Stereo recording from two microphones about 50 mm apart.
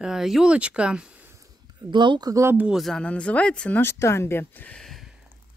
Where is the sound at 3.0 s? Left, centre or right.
Left.